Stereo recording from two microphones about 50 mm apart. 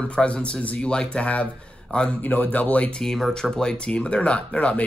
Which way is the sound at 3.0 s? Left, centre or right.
Centre.